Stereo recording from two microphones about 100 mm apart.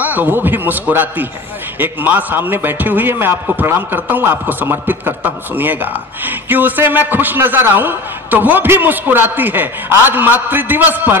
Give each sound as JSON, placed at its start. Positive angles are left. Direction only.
{"t": 0.0, "sound": "a man's voice", "side_deg": -20}